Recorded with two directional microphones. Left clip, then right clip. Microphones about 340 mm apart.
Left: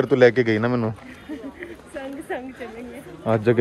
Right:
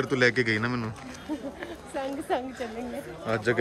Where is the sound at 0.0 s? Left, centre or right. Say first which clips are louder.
Left 8 dB; centre.